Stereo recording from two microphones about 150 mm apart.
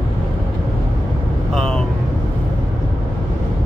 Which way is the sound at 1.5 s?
5° left (ahead or behind).